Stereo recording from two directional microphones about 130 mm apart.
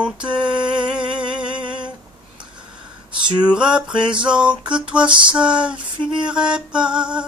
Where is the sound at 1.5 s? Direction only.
35° right (ahead or behind).